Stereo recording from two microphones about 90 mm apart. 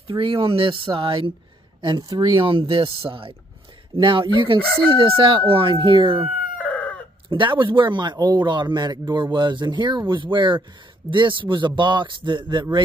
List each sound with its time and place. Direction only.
0.0 s crowing: 70° right (ahead or behind)
1.8 s speech: 50° right (ahead or behind)
2.4 s crowing: 70° right (ahead or behind)
3.9 s crowing: 65° right (ahead or behind)
6.6 s chicken: 15° left (ahead or behind)
7.2 s a man's voice: 65° right (ahead or behind)